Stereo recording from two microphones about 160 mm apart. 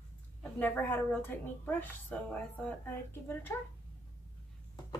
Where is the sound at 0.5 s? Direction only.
10° left (ahead or behind).